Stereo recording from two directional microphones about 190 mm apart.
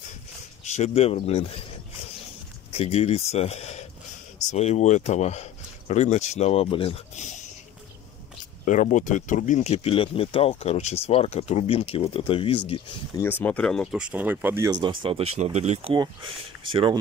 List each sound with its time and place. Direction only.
0.7 s speech: 35° left (ahead or behind)
2.7 s speech: 30° left (ahead or behind)
8.6 s speech: 40° left (ahead or behind)
13.2 s speech: 10° left (ahead or behind); by 17.0 s 25° right (ahead or behind)